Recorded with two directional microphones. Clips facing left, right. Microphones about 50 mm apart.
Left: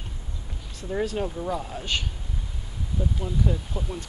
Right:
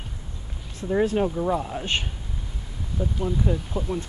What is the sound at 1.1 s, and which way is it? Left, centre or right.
Speech, centre.